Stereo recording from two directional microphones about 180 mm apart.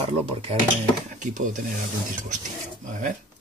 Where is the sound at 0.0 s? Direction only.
30° right (ahead or behind).